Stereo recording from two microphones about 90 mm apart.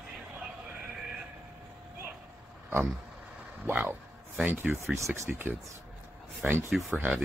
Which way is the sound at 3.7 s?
20° right (ahead or behind).